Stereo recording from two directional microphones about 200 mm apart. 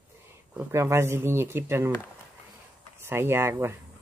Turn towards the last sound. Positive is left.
turn(degrees=-15)  # may be behind; listen again after turning